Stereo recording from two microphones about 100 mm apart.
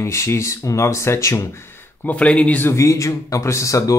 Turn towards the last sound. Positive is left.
turn(degrees=30)  # may be behind; listen again after turning